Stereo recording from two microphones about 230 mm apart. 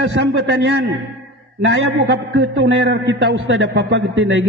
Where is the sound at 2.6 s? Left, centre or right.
Right.